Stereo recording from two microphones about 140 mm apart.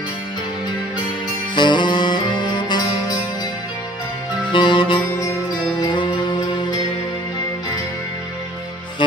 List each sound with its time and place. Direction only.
1.5 s music: 35° left (ahead or behind)
4.5 s music: 35° left (ahead or behind)